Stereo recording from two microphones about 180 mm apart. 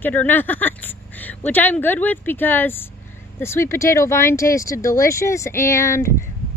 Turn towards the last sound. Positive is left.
turn(degrees=15)  # may be behind; listen again after turning